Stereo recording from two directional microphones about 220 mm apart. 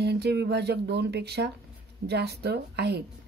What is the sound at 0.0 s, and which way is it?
A woman's voice, 50° right (ahead or behind).